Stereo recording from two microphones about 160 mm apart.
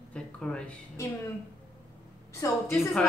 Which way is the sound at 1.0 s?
20° left (ahead or behind).